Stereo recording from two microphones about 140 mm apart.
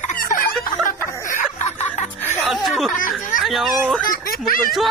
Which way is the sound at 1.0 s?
20° left (ahead or behind).